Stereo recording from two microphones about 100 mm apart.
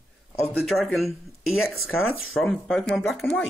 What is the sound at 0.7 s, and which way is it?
Speech, centre (ahead or behind).